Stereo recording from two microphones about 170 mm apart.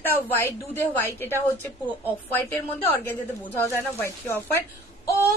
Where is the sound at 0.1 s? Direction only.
15° left (ahead or behind).